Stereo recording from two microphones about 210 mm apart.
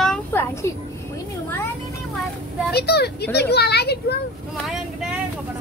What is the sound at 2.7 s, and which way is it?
Speech, 50° left (ahead or behind).